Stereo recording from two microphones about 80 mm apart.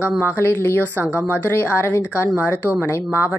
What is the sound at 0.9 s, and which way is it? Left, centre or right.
Speech, centre.